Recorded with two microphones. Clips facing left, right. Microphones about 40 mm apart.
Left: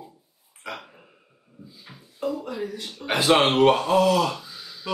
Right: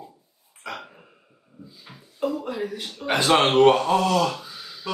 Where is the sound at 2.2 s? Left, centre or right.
Right.